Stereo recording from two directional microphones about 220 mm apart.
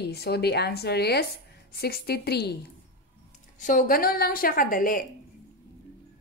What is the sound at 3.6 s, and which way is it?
A woman's voice, 40° left (ahead or behind).